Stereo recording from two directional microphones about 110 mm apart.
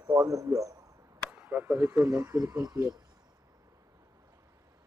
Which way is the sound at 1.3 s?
15° right (ahead or behind).